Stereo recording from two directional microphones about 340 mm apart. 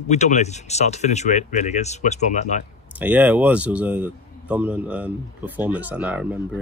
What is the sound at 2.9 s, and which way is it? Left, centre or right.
A man's voice, centre.